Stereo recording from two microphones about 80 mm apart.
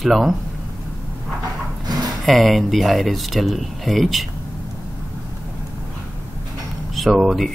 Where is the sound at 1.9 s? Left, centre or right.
Right.